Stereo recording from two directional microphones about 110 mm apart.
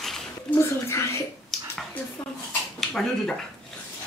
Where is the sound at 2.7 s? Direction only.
5° left (ahead or behind).